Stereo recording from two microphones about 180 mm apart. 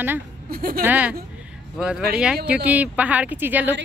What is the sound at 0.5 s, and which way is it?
Speech, 55° right (ahead or behind).